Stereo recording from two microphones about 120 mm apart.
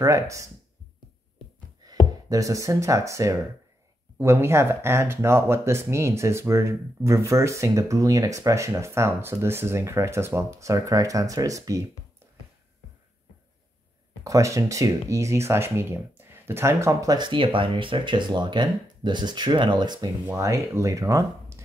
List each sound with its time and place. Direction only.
0.0 s speech: 25° right (ahead or behind)
1.8 s a sound: 35° right (ahead or behind)
2.2 s speech: 25° right (ahead or behind)
14.2 s speech: 25° right (ahead or behind)
17.3 s speech: 45° right (ahead or behind)
20.2 s speech: 25° right (ahead or behind)